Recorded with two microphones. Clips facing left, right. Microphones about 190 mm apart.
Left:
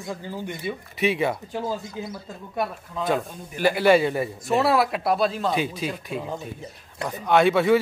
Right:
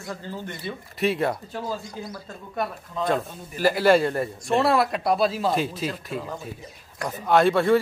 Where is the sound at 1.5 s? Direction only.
15° left (ahead or behind).